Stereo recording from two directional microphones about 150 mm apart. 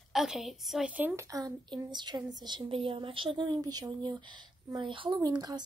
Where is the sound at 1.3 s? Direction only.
25° right (ahead or behind).